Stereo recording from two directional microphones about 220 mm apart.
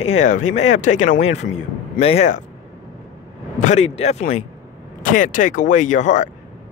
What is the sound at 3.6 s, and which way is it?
Speech, 30° left (ahead or behind).